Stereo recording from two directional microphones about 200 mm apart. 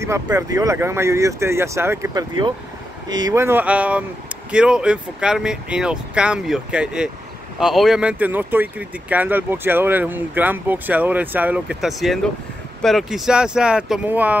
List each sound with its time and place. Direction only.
0.0 s speech: 15° right (ahead or behind)